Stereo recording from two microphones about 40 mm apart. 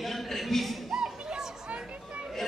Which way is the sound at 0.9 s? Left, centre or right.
Centre.